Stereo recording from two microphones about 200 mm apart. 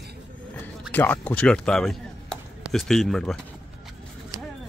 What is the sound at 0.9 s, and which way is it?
Speech, 10° left (ahead or behind).